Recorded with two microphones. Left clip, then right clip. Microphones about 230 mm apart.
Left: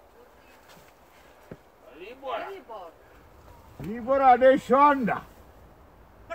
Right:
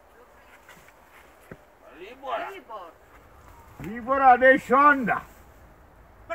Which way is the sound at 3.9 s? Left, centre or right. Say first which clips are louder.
Right 1 dB; centre.